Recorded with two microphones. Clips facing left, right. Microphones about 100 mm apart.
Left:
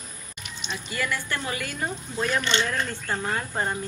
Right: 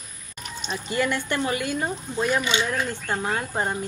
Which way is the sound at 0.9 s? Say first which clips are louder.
Right 5 dB; 25° right (ahead or behind).